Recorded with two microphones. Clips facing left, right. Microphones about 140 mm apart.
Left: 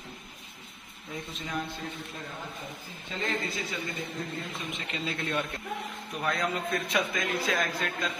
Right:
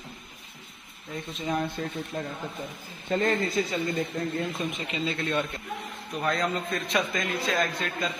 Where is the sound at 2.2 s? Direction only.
40° right (ahead or behind).